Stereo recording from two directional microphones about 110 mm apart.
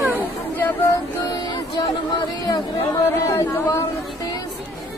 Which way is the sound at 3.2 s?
30° left (ahead or behind).